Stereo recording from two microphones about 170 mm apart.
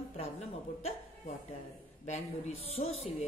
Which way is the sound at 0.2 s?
40° left (ahead or behind).